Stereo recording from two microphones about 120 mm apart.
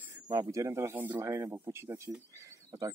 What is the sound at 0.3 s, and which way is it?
Speech, 25° right (ahead or behind).